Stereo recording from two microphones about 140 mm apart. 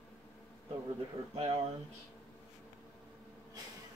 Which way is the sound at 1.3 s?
45° right (ahead or behind).